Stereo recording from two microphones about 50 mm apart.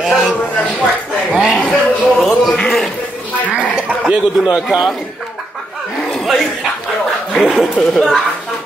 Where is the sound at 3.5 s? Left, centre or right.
Centre.